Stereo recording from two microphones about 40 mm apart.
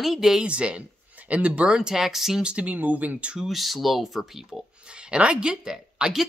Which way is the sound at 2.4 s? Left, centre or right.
Right.